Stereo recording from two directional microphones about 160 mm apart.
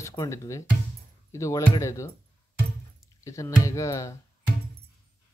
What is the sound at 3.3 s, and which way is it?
Speech, 20° left (ahead or behind).